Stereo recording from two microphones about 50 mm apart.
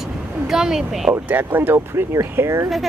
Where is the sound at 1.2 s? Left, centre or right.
Right.